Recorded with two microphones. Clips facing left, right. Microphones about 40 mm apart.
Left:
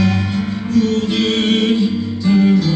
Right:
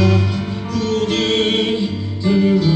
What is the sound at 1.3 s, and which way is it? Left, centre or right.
Music, right.